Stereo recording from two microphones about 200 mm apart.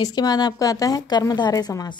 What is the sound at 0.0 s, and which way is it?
A woman's voice, 20° left (ahead or behind).